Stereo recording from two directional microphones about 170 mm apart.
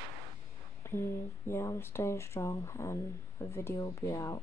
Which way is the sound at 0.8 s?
15° left (ahead or behind).